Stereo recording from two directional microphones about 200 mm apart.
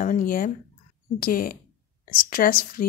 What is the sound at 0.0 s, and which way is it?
A woman's voice, 45° left (ahead or behind).